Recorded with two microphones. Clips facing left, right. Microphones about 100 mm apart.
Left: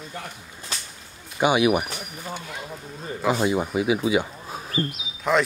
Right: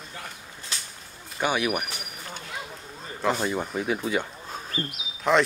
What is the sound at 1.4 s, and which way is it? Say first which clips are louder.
Speech: left 6 dB; 15° left (ahead or behind).